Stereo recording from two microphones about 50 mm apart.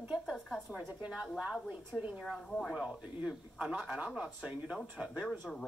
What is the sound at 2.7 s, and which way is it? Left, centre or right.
A man's voice, centre.